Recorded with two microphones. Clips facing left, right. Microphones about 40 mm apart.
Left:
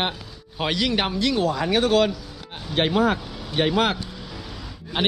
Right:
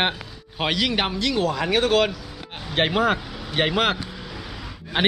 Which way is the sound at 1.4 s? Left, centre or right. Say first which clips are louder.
Right 2 dB; right.